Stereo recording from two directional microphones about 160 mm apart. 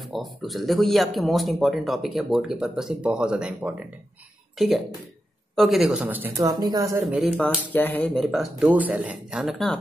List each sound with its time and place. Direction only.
0.0 s speech: centre (ahead or behind)
6.0 s speech: 10° right (ahead or behind)
6.4 s speech: 25° right (ahead or behind)
7.1 s speech: 5° right (ahead or behind)
7.3 s speech: 10° left (ahead or behind)